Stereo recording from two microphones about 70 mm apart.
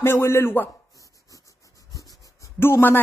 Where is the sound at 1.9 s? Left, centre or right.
Left.